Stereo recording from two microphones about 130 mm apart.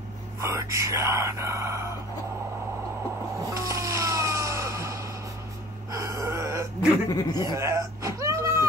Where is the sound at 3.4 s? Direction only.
25° right (ahead or behind).